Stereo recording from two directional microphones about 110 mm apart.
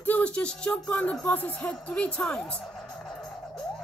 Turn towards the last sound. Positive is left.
turn(degrees=5)  # may be behind; listen again after turning